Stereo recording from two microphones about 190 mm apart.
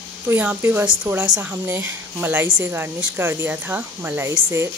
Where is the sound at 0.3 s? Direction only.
10° right (ahead or behind).